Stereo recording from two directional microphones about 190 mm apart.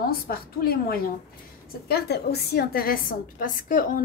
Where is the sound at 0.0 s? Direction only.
50° left (ahead or behind).